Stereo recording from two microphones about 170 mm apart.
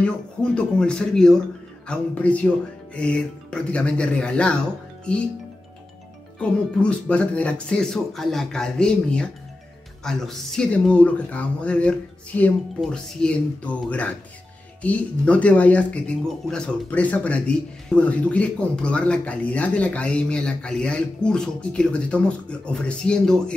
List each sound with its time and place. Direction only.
0.0 s speech: 5° left (ahead or behind)
6.4 s speech: 5° left (ahead or behind)